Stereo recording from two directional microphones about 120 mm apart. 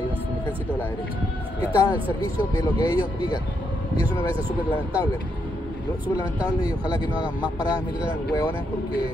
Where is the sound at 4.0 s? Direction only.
45° right (ahead or behind).